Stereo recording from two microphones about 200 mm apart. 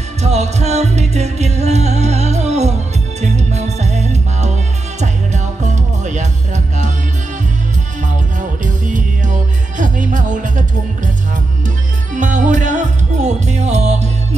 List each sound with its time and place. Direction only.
0.2 s music: 35° right (ahead or behind)
8.4 s music: 40° right (ahead or behind)
12.1 s music: 40° right (ahead or behind)